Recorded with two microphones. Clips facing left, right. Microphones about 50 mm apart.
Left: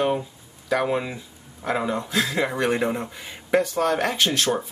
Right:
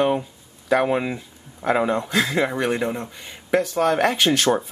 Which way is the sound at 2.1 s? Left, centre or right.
Centre.